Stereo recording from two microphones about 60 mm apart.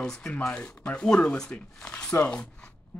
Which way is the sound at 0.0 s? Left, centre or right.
Centre.